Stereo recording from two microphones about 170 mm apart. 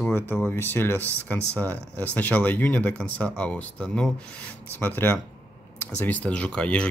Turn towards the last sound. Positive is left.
turn(degrees=5)  # may be behind; listen again after turning